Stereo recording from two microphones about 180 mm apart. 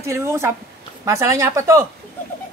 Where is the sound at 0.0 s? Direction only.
15° right (ahead or behind).